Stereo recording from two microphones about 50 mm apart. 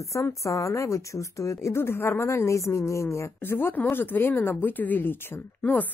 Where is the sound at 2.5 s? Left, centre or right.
Left.